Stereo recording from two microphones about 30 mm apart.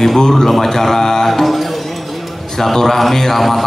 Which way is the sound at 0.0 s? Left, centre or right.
Centre.